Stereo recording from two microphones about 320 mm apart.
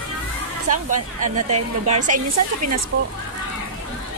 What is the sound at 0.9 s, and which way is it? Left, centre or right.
Speech, right.